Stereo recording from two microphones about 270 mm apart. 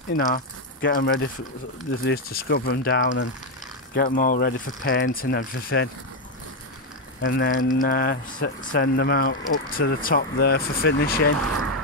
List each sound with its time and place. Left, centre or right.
0.1 s speech: left
3.9 s speech: left
7.2 s speech: left
11.3 s speech: right